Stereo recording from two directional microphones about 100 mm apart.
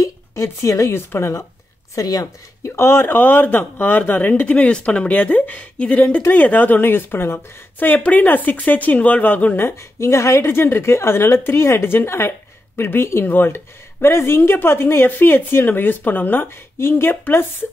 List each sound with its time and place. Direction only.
0.0 s speech: 30° left (ahead or behind)
2.0 s speech: 35° left (ahead or behind)
2.7 s speech: 25° left (ahead or behind)